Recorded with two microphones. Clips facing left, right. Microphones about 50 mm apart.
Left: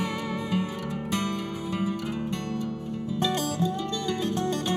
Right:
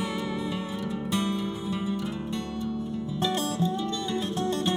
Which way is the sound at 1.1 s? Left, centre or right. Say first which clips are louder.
Right 1 dB; left.